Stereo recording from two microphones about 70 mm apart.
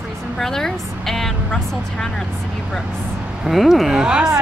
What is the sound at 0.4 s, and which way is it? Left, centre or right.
A woman's voice, centre.